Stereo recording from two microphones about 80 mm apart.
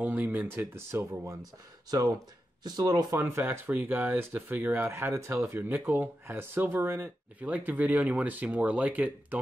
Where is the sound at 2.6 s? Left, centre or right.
Right.